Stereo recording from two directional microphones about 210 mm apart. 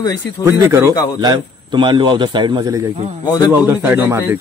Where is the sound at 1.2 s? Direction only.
20° right (ahead or behind).